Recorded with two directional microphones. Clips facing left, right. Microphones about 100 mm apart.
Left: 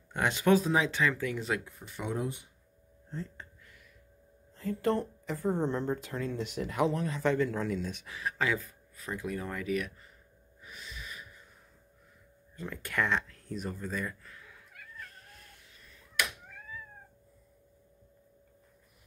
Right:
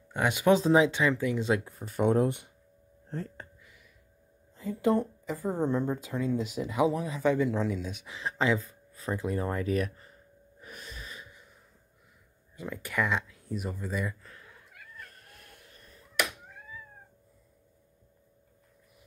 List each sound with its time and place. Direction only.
0.1 s speech: 10° right (ahead or behind)
1.6 s speech: 40° right (ahead or behind); by 2.5 s 65° right (ahead or behind)
3.1 s speech: 50° right (ahead or behind)
4.6 s speech: 10° right (ahead or behind)
8.1 s speech: 25° right (ahead or behind)
10.6 s gasp: 50° right (ahead or behind)
12.5 s speech: 5° right (ahead or behind)
15.0 s cat: 55° right (ahead or behind)